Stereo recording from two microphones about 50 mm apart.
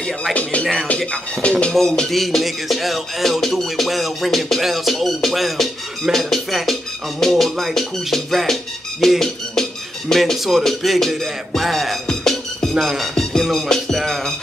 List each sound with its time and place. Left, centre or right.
0.3 s speech: left
0.9 s speech: centre
1.7 s music: centre
9.2 s speech: centre
12.7 s music: centre
13.1 s music: centre